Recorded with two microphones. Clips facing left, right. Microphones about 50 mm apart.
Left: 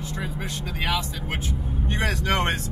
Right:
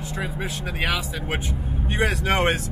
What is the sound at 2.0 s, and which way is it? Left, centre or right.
Speech, centre.